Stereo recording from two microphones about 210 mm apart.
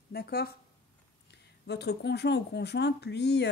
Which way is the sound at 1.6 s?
55° left (ahead or behind).